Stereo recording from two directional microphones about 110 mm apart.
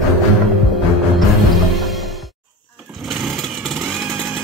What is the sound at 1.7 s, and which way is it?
Music, centre (ahead or behind).